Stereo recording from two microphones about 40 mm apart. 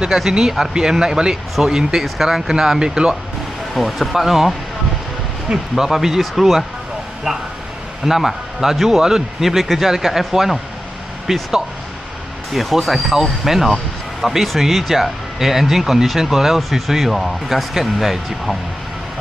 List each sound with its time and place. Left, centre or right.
0.1 s speech: centre
3.7 s speech: centre
5.5 s speech: right
5.9 s speech: centre
12.5 s speech: centre